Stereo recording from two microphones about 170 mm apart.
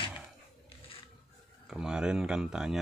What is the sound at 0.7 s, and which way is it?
Filing, 35° left (ahead or behind).